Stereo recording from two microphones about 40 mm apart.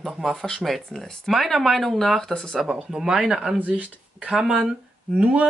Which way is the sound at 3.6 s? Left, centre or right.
Right.